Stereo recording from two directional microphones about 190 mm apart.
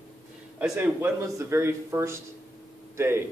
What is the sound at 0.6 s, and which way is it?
A man's voice, 10° right (ahead or behind).